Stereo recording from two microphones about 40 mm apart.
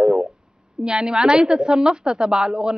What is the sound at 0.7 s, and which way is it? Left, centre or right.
A woman's voice, right.